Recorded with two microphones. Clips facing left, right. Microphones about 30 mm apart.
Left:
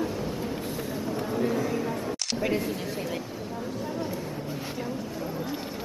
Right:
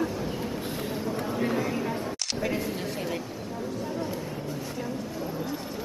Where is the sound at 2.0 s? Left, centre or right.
Centre.